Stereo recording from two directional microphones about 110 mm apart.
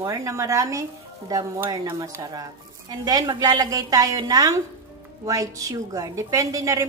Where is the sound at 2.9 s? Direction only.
35° right (ahead or behind).